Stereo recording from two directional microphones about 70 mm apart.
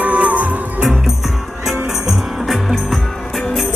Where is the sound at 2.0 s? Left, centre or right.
Centre.